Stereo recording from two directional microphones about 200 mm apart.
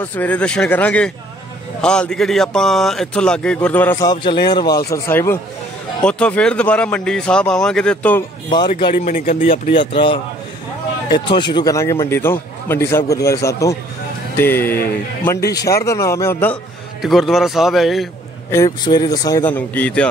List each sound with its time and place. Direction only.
0.0 s a man's voice: 10° left (ahead or behind)
3.9 s a man's voice: 20° left (ahead or behind)
8.6 s a man's voice: 25° left (ahead or behind)
8.9 s speech: 45° left (ahead or behind)
9.8 s a man's voice: 25° left (ahead or behind)
17.0 s a man's voice: centre (ahead or behind)
18.5 s a man's voice: 15° left (ahead or behind)